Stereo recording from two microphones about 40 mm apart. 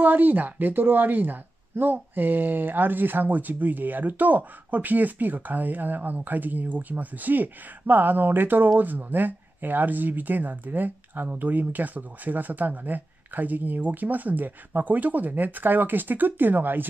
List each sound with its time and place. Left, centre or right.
0.0 s speech: right